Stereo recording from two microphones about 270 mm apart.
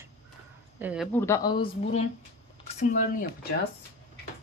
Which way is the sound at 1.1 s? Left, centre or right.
Centre.